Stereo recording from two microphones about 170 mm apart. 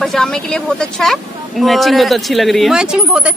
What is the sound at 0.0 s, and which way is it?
Speech, centre (ahead or behind).